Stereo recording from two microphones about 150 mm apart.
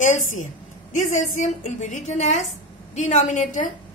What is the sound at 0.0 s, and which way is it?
A woman's voice, 55° left (ahead or behind).